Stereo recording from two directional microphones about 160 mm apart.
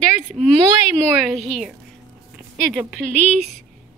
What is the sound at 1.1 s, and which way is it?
Speech, centre (ahead or behind).